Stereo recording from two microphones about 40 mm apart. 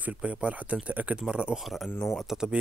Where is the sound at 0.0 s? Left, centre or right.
Right.